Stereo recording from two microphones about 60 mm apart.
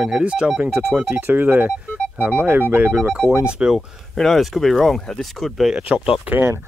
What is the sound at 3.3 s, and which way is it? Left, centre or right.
Speech, centre.